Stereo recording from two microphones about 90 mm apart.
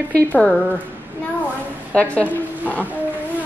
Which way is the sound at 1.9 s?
15° left (ahead or behind).